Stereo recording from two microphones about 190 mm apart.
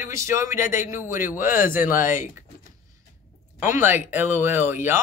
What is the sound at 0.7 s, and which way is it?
Speech, 45° left (ahead or behind).